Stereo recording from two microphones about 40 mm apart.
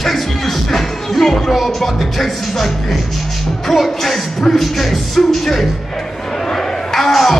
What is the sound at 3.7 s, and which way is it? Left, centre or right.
Music, centre.